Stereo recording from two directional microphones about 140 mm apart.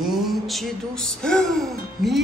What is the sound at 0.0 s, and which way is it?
Speech, centre (ahead or behind).